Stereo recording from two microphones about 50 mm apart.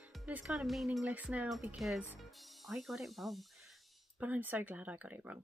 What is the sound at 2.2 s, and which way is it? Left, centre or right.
Speech, centre.